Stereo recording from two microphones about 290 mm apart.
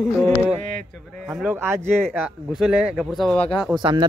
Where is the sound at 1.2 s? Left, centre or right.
Centre.